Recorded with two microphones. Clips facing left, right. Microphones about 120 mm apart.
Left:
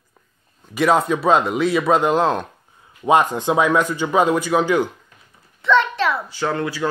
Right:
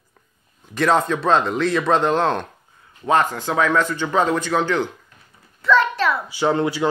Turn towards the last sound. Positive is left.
turn(degrees=-25)  # may be behind; listen again after turning